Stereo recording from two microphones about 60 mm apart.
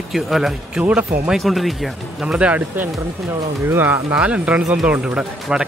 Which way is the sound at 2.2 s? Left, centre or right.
Centre.